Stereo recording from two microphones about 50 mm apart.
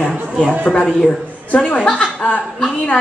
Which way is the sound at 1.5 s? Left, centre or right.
Left.